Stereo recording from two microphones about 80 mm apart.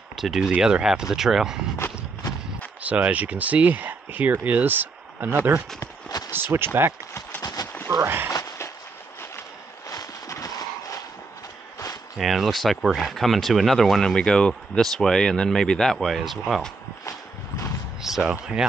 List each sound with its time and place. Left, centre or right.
0.1 s speech: centre
2.8 s speech: centre
5.8 s clip-clop: left
6.5 s speech: right
7.6 s a sound: left
8.0 s speech: right
9.8 s horse: left
12.2 s speech: centre
18.0 s speech: centre